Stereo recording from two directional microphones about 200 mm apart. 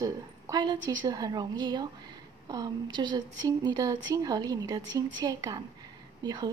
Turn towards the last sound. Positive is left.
turn(degrees=-20)  # may be behind; listen again after turning